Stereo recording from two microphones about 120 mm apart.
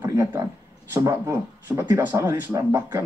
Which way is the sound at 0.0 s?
30° right (ahead or behind).